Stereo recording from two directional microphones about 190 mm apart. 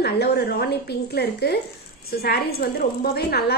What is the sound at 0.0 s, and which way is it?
A woman's voice, 55° left (ahead or behind).